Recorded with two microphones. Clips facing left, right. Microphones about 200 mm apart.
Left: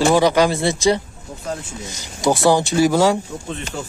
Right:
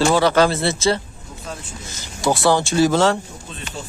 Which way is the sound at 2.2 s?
20° left (ahead or behind).